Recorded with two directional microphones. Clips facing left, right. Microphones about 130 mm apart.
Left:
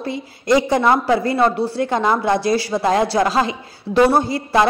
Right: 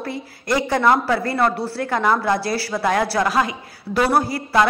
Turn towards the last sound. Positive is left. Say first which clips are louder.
# left 1 dB
turn(degrees=25)  # may be behind; listen again after turning